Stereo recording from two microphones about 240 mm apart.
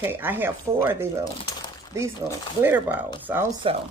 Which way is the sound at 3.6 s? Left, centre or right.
Right.